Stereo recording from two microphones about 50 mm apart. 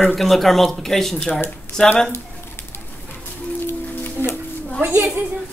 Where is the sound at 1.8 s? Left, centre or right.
Left.